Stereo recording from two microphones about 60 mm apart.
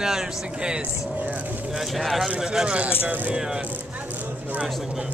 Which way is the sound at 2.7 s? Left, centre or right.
Right.